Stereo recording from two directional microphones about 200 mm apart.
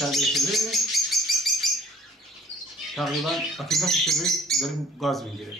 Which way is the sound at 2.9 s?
Centre (ahead or behind).